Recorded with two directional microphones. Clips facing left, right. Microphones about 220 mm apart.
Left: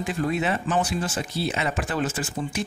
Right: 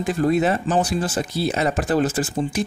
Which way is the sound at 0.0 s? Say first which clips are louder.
Right 6 dB; 40° right (ahead or behind).